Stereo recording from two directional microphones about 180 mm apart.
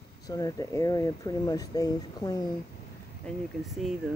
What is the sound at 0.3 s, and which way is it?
Speech, 20° left (ahead or behind).